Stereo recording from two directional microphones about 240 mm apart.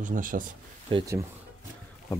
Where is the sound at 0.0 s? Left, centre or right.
Right.